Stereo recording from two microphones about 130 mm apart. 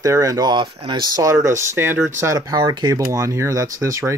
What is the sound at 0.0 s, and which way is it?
Speech, 25° right (ahead or behind).